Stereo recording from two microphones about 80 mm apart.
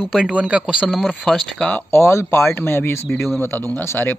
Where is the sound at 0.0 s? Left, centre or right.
Centre.